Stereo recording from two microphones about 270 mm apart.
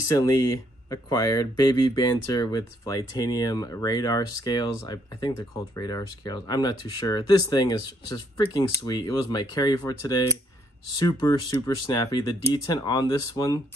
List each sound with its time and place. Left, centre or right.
0.1 s speech: centre